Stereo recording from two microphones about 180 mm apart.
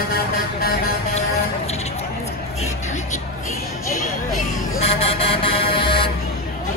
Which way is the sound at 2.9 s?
45° left (ahead or behind).